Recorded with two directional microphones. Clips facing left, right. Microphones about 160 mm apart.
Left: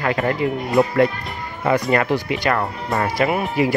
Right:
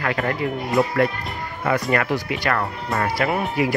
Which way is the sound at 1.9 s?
25° left (ahead or behind).